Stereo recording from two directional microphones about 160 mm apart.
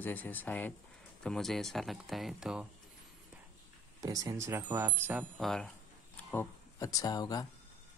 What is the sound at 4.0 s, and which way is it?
Speech, 20° right (ahead or behind).